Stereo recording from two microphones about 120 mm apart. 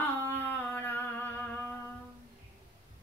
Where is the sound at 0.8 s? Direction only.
15° left (ahead or behind).